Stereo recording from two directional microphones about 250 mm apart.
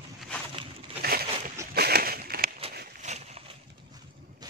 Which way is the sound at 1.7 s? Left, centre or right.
Right.